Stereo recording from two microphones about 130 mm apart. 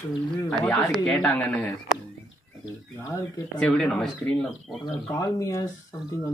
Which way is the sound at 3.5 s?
5° left (ahead or behind).